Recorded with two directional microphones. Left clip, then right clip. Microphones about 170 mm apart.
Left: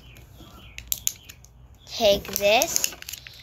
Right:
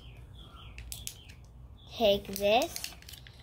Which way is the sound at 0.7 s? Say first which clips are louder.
Left 15 dB; 5° right (ahead or behind).